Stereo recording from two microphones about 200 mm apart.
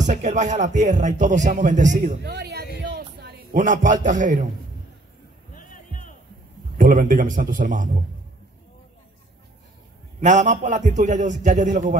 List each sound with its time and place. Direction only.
0.1 s a man's voice: 35° right (ahead or behind); by 2.6 s 55° right (ahead or behind)
2.8 s a sound: 60° right (ahead or behind)
3.5 s a man's voice: 40° right (ahead or behind)
5.5 s music: 40° left (ahead or behind)
6.8 s a man's voice: 40° right (ahead or behind)
10.2 s a man's voice: 40° right (ahead or behind)